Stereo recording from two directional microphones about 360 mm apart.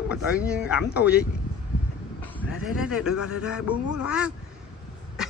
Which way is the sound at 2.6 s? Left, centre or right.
Centre.